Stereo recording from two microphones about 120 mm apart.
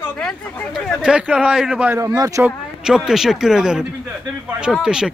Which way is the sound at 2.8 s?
5° right (ahead or behind).